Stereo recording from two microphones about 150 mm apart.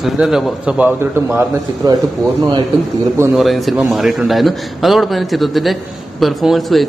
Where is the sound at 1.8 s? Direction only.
25° right (ahead or behind).